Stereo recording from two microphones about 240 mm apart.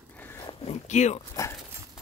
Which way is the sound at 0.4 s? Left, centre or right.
Left.